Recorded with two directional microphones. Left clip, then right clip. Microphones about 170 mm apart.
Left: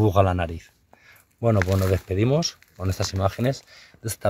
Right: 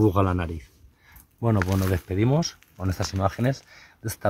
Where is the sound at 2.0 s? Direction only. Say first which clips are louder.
Left 2 dB; 30° left (ahead or behind).